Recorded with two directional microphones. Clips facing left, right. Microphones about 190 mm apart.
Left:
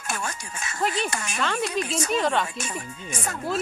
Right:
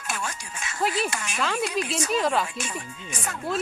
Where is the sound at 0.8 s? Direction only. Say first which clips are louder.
Even; 5° right (ahead or behind).